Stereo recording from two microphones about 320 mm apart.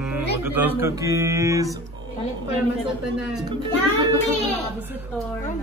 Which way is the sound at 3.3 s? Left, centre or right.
Centre.